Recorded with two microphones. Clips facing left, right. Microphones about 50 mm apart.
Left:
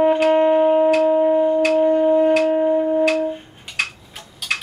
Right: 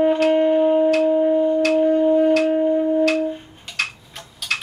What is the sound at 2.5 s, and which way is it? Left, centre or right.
Shofar, left.